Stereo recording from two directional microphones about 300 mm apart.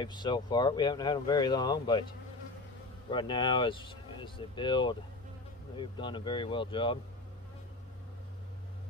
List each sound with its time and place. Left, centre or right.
0.0 s speech: centre
3.1 s speech: centre